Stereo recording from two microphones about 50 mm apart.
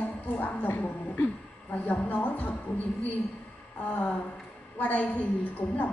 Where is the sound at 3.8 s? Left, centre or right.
Left.